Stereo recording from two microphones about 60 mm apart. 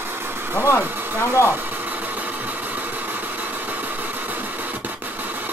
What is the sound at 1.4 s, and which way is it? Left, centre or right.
Vehicle, right.